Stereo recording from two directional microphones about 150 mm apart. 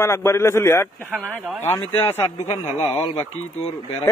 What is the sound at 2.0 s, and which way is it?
Speech, 15° left (ahead or behind).